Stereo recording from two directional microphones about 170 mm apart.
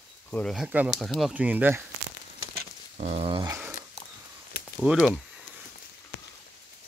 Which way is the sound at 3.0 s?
35° right (ahead or behind).